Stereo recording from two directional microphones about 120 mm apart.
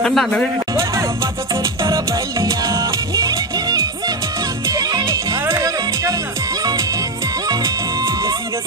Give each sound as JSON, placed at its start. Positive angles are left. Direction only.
{"t": 0.0, "sound": "speech", "side_deg": 5}
{"t": 0.7, "sound": "music", "side_deg": -25}